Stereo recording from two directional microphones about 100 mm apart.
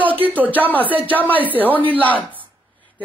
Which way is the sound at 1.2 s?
15° left (ahead or behind).